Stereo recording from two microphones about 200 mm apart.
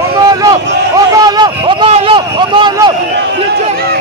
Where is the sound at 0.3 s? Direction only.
20° right (ahead or behind).